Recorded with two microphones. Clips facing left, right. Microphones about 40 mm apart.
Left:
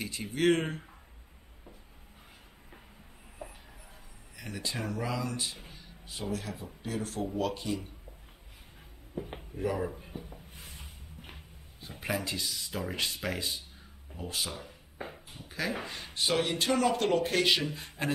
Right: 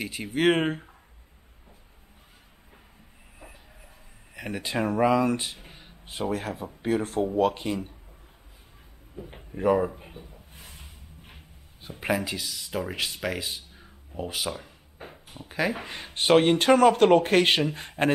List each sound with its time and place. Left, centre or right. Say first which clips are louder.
0.4 s speech: right 4 dB; right
4.4 s speech: right 8 dB; right
9.6 s speech: right 10 dB; right
12.0 s speech: right 7 dB; right
12.3 s speech: right 3 dB; centre
15.3 s speech: right 7 dB; right